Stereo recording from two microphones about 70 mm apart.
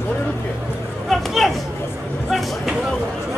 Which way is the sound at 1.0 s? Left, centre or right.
Centre.